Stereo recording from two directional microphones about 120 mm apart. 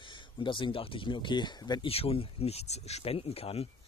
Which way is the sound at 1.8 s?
55° left (ahead or behind).